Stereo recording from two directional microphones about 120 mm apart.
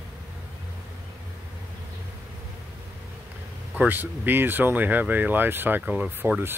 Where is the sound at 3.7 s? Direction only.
15° right (ahead or behind).